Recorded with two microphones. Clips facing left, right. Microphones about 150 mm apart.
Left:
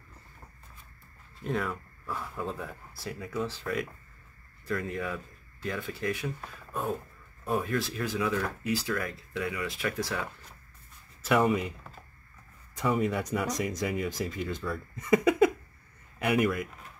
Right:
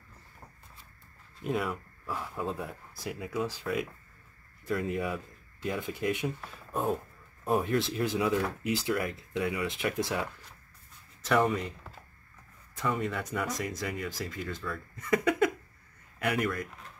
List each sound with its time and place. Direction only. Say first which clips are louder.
1.4 s speech: even; 5° right (ahead or behind)
2.6 s speech: right 1 dB; 15° right (ahead or behind)
4.9 s speech: right 2 dB; 20° right (ahead or behind)
11.2 s speech: left 2 dB; 5° left (ahead or behind)
12.7 s speech: left 4 dB; 15° left (ahead or behind)